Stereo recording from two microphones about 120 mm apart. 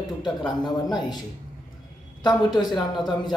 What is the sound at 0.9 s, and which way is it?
Speech, 35° left (ahead or behind).